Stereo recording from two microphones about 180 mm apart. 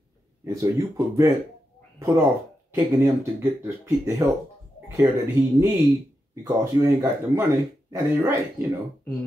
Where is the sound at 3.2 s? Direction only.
15° right (ahead or behind).